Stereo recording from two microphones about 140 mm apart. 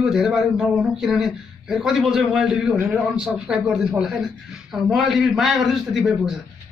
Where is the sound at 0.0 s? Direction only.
5° right (ahead or behind).